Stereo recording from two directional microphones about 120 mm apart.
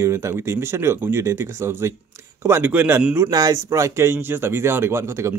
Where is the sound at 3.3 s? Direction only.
30° right (ahead or behind).